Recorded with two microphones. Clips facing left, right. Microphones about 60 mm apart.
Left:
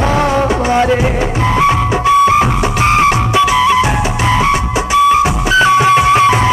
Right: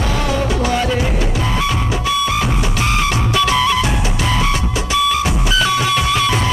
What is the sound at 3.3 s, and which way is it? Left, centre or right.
Music, centre.